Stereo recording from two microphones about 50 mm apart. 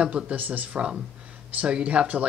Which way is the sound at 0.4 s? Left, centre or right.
Right.